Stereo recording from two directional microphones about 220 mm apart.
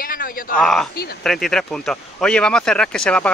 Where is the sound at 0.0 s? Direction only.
40° left (ahead or behind).